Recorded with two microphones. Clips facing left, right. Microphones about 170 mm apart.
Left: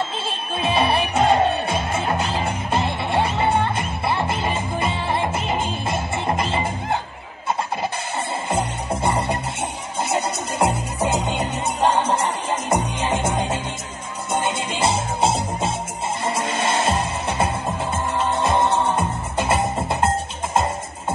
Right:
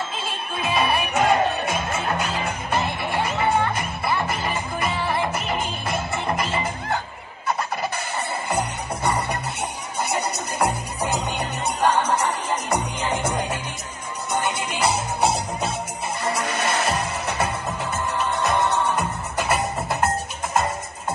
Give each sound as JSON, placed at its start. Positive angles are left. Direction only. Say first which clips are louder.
{"t": 0.6, "sound": "music", "louder": "left 3 dB", "side_deg": 30}
{"t": 8.5, "sound": "music", "louder": "left 3 dB", "side_deg": 25}